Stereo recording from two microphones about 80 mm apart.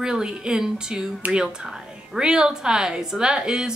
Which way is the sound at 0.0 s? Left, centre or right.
Centre.